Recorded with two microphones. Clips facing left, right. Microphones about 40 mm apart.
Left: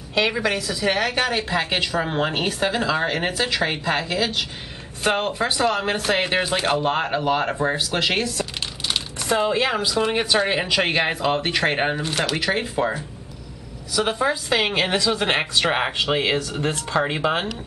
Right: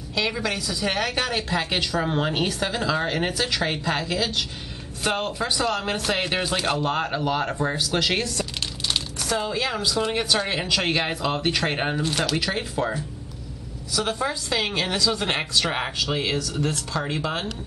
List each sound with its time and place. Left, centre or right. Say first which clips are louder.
0.1 s a woman's voice: left 5 dB; left
0.4 s a woman's voice: left 3 dB; centre
8.4 s crumpling: left 1 dB; centre
9.2 s a woman's voice: left 7 dB; left